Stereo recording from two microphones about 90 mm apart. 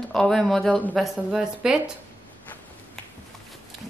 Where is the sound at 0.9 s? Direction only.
5° right (ahead or behind).